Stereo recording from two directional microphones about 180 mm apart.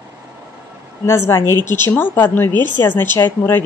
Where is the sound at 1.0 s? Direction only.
15° left (ahead or behind).